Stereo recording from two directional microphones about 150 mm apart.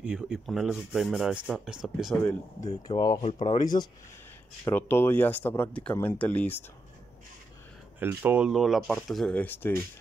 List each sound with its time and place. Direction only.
0.0 s speech: 5° right (ahead or behind)
3.2 s speech: 45° left (ahead or behind)
4.6 s speech: 15° left (ahead or behind)
8.0 s speech: 15° right (ahead or behind); by 9.8 s 15° left (ahead or behind)